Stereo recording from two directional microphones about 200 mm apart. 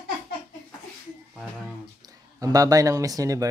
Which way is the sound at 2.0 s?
20° right (ahead or behind).